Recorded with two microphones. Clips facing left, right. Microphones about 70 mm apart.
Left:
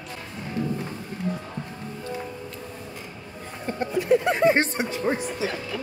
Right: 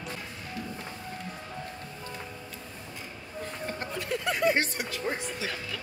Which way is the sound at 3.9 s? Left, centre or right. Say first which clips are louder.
Left 10 dB; left.